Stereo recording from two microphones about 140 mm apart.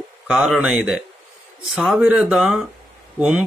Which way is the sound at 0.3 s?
5° right (ahead or behind).